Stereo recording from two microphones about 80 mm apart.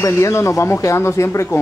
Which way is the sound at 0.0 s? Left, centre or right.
Left.